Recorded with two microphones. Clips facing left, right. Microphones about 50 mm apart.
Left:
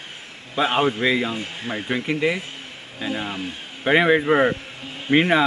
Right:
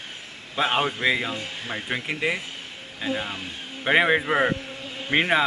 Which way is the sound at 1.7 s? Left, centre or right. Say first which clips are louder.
Left 5 dB; centre.